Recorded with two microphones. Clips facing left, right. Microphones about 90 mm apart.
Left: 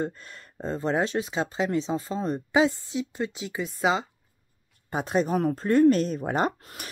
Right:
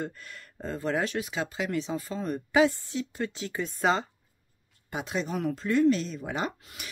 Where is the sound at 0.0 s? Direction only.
30° left (ahead or behind); by 4.1 s 5° left (ahead or behind).